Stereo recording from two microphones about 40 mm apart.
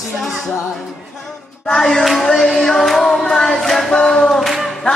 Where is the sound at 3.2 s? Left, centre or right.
Centre.